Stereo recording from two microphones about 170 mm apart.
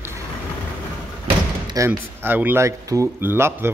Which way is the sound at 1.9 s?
10° right (ahead or behind).